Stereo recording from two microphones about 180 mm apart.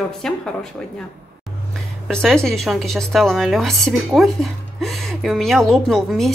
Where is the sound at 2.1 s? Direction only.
5° left (ahead or behind).